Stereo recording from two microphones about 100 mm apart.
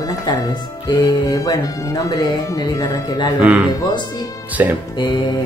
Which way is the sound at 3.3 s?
15° right (ahead or behind).